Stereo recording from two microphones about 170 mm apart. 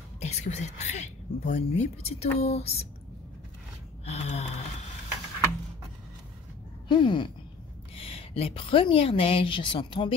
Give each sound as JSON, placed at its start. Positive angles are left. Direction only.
{"t": 0.2, "sound": "a woman's voice", "side_deg": 40}
{"t": 4.0, "sound": "gasp", "side_deg": 40}
{"t": 6.9, "sound": "a sound", "side_deg": 30}
{"t": 7.9, "sound": "a woman's voice", "side_deg": 35}